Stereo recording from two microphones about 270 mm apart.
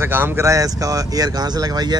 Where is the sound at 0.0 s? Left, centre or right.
Centre.